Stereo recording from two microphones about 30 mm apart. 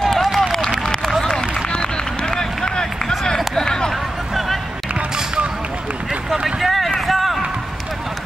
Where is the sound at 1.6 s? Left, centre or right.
Left.